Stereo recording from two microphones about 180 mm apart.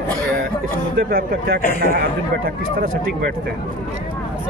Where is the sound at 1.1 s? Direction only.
55° right (ahead or behind).